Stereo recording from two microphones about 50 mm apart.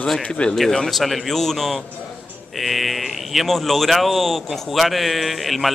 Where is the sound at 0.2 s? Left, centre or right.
Centre.